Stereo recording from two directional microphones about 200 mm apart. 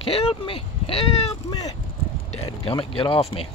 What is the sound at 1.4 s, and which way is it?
Speech, 20° left (ahead or behind).